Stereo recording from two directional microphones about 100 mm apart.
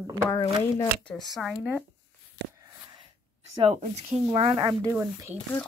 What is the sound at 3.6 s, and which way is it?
Speech, 90° right.